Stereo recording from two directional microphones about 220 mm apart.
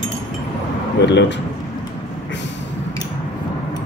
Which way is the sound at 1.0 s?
50° left (ahead or behind).